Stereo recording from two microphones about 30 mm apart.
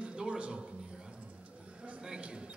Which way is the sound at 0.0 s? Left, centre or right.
Right.